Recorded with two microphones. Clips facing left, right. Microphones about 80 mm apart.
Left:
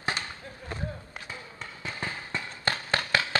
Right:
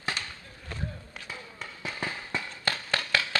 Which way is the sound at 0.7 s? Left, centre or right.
Centre.